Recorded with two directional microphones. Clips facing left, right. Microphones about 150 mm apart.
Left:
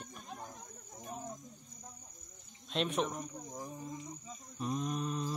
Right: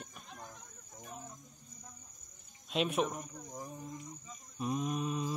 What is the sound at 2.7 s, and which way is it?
Speech, 5° right (ahead or behind).